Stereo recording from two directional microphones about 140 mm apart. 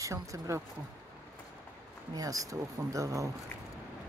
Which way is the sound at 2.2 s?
25° right (ahead or behind).